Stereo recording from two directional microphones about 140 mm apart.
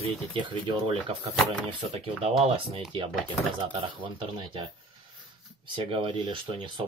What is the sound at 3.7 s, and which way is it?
Speech, 35° right (ahead or behind).